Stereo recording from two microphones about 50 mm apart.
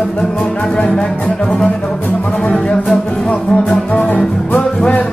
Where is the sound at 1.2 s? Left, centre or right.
Centre.